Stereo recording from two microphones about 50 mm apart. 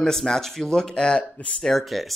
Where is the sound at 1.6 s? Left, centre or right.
Centre.